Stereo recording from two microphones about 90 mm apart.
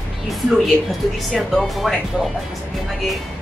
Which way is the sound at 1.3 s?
Centre (ahead or behind).